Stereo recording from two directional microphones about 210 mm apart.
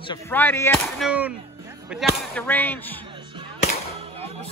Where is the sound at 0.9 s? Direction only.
5° right (ahead or behind).